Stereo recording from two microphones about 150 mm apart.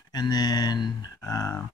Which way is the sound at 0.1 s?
25° left (ahead or behind).